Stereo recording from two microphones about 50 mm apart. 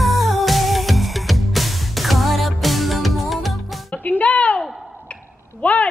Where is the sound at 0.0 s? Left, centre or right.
Centre.